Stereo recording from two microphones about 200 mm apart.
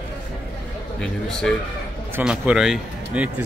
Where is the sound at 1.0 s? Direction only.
5° left (ahead or behind).